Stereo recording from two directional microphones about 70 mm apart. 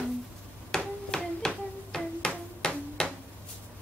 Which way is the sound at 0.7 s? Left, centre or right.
Centre.